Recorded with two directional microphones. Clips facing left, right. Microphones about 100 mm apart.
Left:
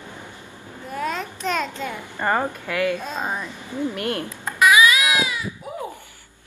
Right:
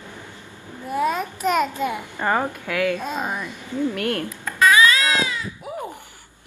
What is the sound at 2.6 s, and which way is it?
Speech, 10° left (ahead or behind).